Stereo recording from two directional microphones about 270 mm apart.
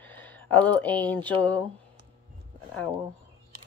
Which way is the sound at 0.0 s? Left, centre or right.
Centre.